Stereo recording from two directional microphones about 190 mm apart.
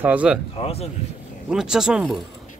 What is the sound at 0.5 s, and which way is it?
Speech, 30° left (ahead or behind).